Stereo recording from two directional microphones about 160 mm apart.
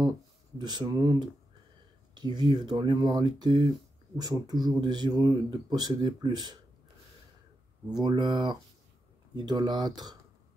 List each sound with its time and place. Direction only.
0.6 s speech: 25° right (ahead or behind)
7.9 s speech: 25° right (ahead or behind)